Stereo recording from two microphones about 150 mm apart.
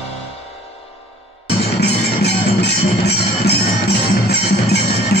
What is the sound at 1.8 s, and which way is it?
Music, 90° left.